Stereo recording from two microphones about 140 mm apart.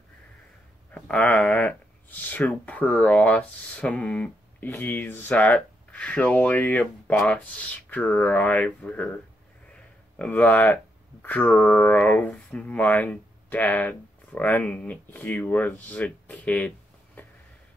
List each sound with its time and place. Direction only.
0.9 s speech: 10° left (ahead or behind)
10.1 s speech: 10° left (ahead or behind)